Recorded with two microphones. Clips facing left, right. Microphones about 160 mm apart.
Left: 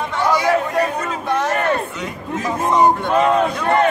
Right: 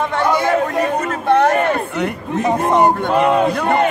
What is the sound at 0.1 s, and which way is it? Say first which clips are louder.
Chatter: right 2 dB; 55° right (ahead or behind).